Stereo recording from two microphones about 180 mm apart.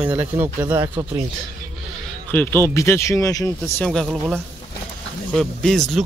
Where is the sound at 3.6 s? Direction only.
Centre (ahead or behind).